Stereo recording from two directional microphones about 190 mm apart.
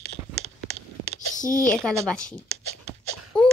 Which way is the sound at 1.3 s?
45° left (ahead or behind).